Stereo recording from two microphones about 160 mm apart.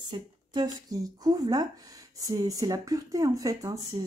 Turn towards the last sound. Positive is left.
turn(degrees=-25)  # may be behind; listen again after turning